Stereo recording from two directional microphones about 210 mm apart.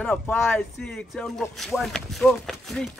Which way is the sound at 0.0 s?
5° left (ahead or behind).